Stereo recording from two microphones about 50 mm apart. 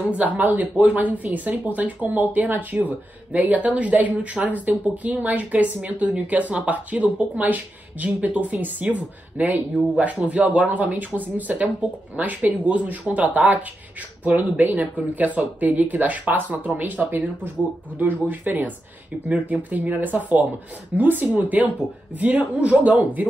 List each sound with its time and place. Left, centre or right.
0.0 s speech: right